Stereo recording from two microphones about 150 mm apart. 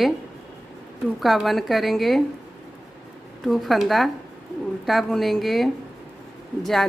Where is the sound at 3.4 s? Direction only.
Centre (ahead or behind).